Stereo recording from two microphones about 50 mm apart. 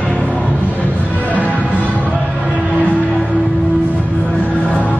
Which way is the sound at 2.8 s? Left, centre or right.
Left.